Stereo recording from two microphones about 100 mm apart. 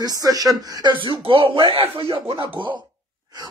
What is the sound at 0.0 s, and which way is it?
Speech, 40° right (ahead or behind).